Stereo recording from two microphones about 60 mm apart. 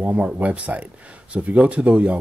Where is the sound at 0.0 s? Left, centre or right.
Right.